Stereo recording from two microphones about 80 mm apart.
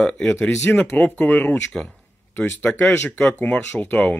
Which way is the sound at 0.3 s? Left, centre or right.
Left.